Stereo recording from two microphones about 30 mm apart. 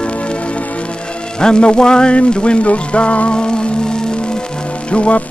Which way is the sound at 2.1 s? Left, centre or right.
Left.